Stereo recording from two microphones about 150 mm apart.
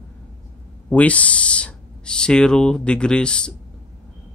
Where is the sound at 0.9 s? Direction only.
10° left (ahead or behind).